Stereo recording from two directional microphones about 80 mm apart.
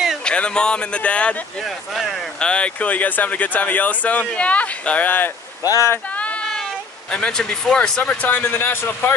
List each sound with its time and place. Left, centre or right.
0.2 s speech: centre
1.6 s speech: centre
2.4 s speech: centre
5.6 s speech: left
6.1 s sheep: centre
6.6 s speech: centre